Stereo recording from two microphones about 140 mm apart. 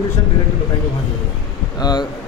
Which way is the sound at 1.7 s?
30° left (ahead or behind).